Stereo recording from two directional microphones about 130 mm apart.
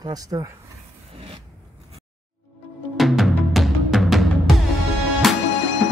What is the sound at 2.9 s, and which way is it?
Music, centre (ahead or behind).